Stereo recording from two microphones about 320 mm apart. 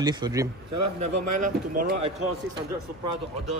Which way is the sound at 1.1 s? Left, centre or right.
Right.